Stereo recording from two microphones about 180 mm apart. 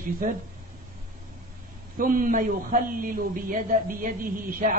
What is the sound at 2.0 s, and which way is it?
A man's voice, 50° right (ahead or behind).